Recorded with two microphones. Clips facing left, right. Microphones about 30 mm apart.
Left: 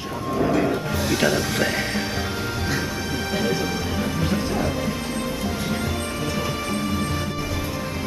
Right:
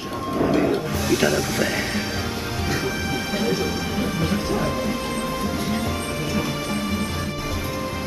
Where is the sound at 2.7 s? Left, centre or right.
Centre.